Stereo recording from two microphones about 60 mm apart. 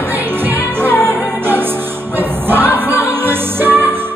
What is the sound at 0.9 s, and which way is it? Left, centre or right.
Music, centre.